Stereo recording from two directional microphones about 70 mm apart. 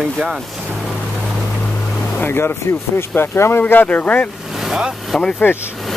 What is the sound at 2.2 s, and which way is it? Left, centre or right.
Speech, left.